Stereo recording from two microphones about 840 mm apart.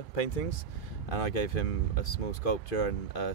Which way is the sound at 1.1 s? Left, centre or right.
Left.